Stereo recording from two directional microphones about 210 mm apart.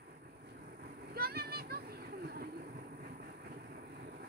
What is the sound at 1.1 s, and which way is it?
Vehicle, 50° right (ahead or behind).